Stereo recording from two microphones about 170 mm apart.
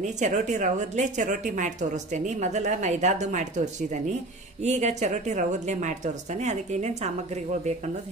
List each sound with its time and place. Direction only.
0.0 s speech: 45° right (ahead or behind)